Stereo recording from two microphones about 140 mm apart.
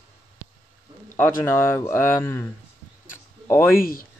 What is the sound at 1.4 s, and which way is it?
Speech, 20° left (ahead or behind).